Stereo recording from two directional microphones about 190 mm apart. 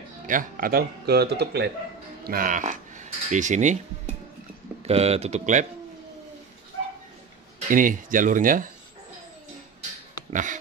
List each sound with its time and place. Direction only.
0.3 s speech: 45° right (ahead or behind)
2.2 s speech: 50° right (ahead or behind)
7.6 s speech: 45° right (ahead or behind)
10.3 s speech: 40° right (ahead or behind)